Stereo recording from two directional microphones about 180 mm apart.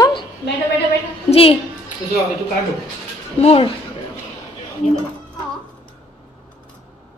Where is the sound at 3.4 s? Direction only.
35° left (ahead or behind).